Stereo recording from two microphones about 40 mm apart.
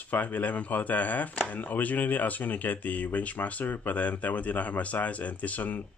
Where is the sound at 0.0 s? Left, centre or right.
Left.